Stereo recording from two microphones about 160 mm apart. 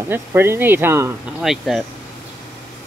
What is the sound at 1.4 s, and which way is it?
Speech, centre (ahead or behind).